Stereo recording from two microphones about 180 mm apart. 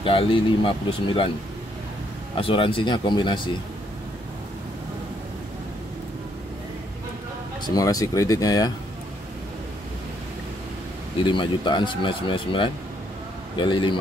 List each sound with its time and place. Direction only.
0.0 s speech: 30° left (ahead or behind)
2.3 s speech: 30° left (ahead or behind)
7.6 s speech: 20° left (ahead or behind)
11.1 s speech: 25° left (ahead or behind)